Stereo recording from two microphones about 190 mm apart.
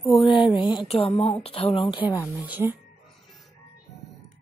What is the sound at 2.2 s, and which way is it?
Speech, 10° right (ahead or behind).